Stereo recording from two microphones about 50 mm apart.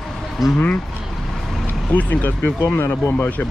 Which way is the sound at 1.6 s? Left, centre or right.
Left.